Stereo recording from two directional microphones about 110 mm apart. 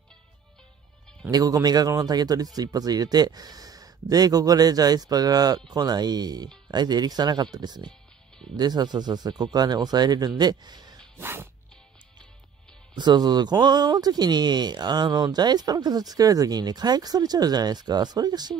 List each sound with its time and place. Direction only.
1.3 s speech: 35° right (ahead or behind)
11.1 s a sound: 20° right (ahead or behind)
12.9 s speech: 40° right (ahead or behind)